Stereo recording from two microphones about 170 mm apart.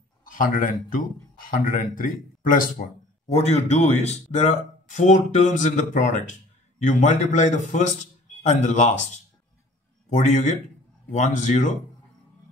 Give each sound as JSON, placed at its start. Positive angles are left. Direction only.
{"t": 0.2, "sound": "speech", "side_deg": 55}
{"t": 3.3, "sound": "speech", "side_deg": 40}